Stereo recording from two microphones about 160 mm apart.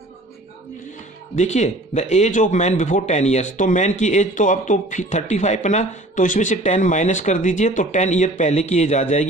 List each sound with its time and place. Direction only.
1.3 s speech: 45° left (ahead or behind)